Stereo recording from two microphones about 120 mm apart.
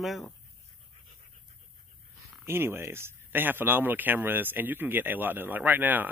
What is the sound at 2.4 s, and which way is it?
Speech, 20° right (ahead or behind).